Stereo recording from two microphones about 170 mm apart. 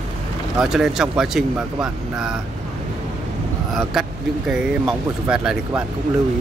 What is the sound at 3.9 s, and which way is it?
Speech, centre (ahead or behind).